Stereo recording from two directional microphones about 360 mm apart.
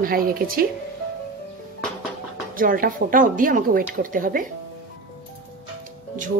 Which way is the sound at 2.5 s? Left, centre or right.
Right.